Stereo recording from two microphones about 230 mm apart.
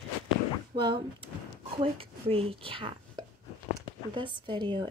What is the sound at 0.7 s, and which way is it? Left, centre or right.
Speech, centre.